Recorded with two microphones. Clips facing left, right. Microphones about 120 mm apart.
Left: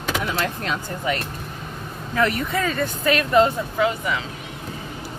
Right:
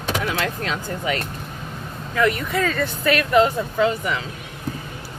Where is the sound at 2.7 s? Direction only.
20° left (ahead or behind).